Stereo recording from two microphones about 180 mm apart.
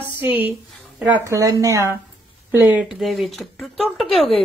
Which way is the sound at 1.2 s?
20° right (ahead or behind).